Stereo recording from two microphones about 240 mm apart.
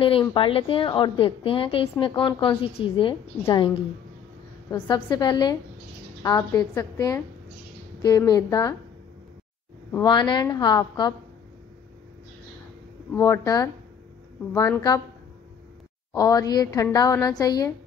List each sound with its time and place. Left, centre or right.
0.0 s a woman's voice: left
9.9 s a woman's voice: centre
13.1 s a woman's voice: centre
16.1 s a woman's voice: centre